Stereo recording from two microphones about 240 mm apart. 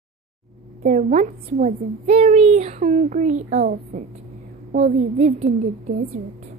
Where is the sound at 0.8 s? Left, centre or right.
Right.